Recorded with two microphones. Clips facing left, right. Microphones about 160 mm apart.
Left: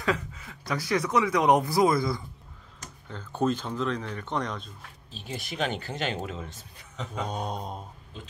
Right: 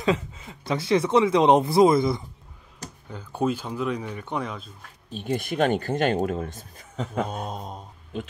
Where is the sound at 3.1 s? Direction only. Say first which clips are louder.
Right 1 dB; 10° right (ahead or behind).